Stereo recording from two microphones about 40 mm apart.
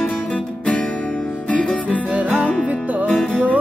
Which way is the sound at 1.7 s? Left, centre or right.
Left.